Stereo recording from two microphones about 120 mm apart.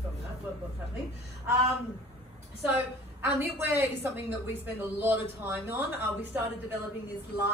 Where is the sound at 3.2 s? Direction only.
15° right (ahead or behind).